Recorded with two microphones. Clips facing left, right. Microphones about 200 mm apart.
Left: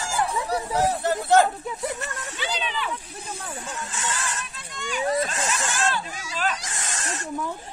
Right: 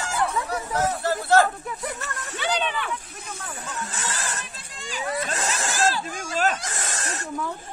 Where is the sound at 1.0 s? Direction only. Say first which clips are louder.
Even; 20° left (ahead or behind).